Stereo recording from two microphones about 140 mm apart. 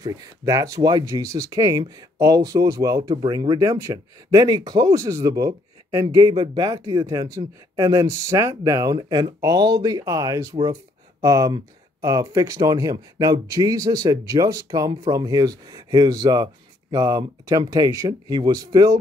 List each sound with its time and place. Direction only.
0.0 s speech: 25° right (ahead or behind)